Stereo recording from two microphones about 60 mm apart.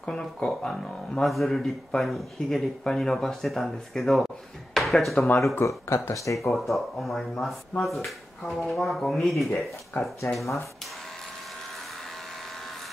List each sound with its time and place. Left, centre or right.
0.0 s speech: centre
5.5 s speech: left
6.1 s speech: left
6.5 s speech: centre
10.4 s speech: left